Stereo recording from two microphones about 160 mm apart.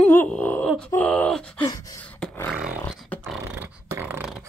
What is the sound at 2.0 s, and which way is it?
Beatboxing, 10° left (ahead or behind).